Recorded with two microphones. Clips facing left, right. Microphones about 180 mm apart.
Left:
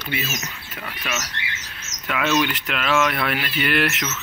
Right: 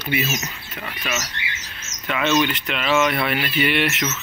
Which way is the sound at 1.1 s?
Centre (ahead or behind).